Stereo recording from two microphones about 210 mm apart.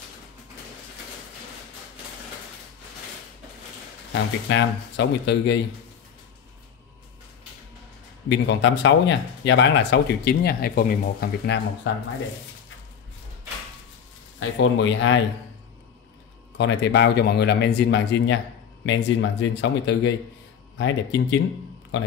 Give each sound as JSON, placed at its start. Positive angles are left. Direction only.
{"t": 4.1, "sound": "speech", "side_deg": 55}
{"t": 8.3, "sound": "speech", "side_deg": 55}
{"t": 14.6, "sound": "speech", "side_deg": 60}
{"t": 16.5, "sound": "speech", "side_deg": 60}